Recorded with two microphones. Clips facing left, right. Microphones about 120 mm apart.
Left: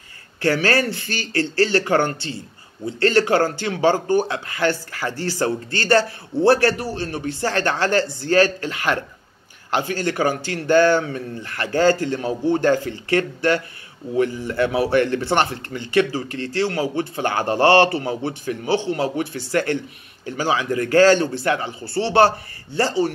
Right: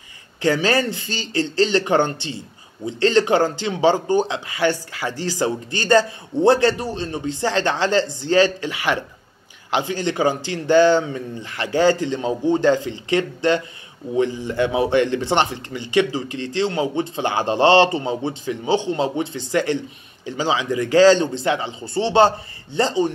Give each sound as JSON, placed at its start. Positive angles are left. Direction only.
{"t": 0.4, "sound": "a man's voice", "side_deg": -15}